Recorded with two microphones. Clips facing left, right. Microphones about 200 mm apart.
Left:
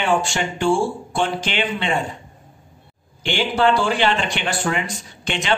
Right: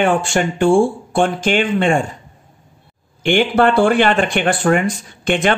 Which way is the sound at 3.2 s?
55° right (ahead or behind).